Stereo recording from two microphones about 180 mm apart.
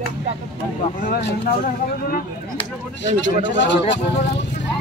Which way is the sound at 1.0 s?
60° left (ahead or behind).